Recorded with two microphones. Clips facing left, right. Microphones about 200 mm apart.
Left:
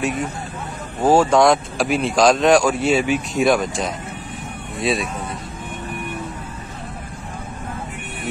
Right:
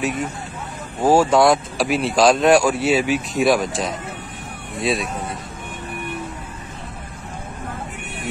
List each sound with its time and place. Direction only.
1.0 s speech: 10° right (ahead or behind)